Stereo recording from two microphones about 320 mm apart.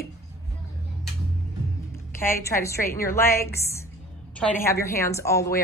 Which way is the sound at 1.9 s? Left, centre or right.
Centre.